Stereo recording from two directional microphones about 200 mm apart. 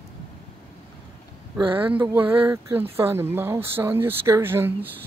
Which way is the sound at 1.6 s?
25° right (ahead or behind).